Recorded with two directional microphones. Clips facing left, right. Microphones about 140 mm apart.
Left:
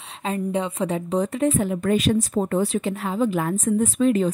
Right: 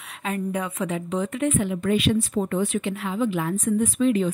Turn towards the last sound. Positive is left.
turn(degrees=40)  # may be behind; listen again after turning